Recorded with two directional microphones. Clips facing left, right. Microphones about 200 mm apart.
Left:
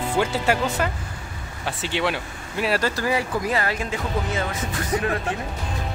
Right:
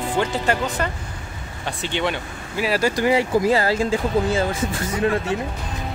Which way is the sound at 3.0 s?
25° right (ahead or behind).